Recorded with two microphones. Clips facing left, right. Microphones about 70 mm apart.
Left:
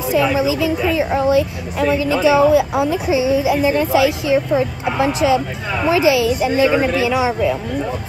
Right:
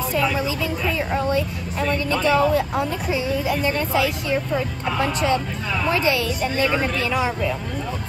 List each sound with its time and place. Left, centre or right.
0.1 s a woman's voice: centre